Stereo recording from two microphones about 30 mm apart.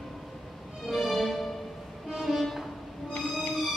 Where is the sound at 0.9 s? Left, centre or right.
Centre.